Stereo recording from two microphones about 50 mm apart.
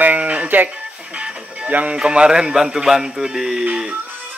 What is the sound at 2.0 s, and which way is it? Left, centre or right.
Speech, centre.